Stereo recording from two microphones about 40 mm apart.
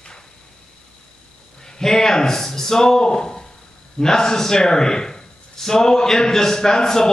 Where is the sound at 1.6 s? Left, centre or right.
Centre.